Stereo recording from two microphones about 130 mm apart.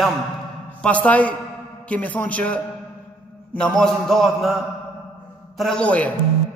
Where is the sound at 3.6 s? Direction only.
5° left (ahead or behind).